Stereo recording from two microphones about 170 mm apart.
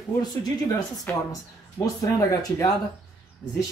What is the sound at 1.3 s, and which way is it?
A man's voice, 20° left (ahead or behind).